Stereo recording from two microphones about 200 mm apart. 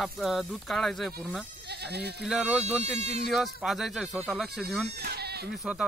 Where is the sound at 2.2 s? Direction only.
Centre (ahead or behind).